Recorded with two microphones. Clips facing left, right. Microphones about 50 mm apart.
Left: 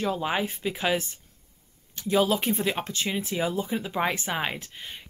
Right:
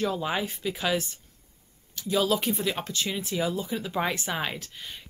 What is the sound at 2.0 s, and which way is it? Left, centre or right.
Speech, left.